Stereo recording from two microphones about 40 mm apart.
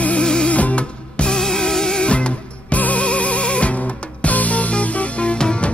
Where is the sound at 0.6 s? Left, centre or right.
Left.